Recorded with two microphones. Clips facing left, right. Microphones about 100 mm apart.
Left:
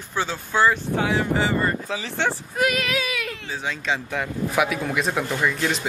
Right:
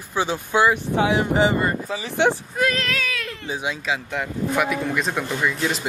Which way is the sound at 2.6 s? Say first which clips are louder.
Even; 10° left (ahead or behind).